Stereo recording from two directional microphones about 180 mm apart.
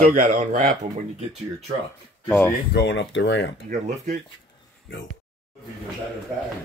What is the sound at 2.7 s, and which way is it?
Speech, 75° left (ahead or behind).